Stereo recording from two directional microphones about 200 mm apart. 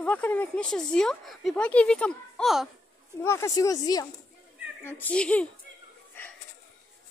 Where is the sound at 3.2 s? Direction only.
15° left (ahead or behind).